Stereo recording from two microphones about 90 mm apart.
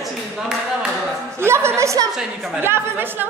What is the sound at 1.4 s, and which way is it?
Speech, 30° right (ahead or behind).